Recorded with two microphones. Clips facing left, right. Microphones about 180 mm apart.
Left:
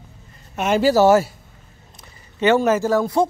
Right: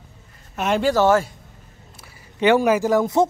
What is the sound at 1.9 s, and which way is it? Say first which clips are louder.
Speech: even; 10° right (ahead or behind).